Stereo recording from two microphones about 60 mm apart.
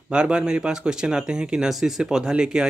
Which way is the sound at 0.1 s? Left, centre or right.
Centre.